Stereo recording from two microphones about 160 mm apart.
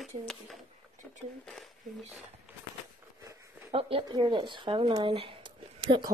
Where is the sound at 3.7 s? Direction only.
35° right (ahead or behind).